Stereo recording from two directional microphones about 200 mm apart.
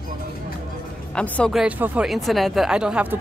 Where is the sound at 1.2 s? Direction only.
5° left (ahead or behind).